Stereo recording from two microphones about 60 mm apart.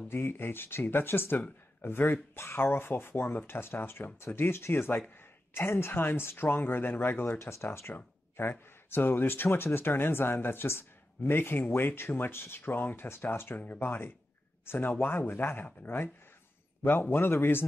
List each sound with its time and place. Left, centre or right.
0.1 s speech: left
7.3 s speech: left